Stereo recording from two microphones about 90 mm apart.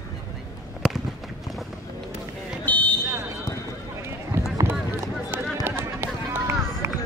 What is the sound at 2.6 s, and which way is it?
Fire alarm, 15° left (ahead or behind).